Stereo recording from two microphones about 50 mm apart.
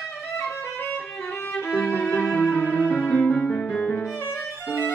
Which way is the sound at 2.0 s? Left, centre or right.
Left.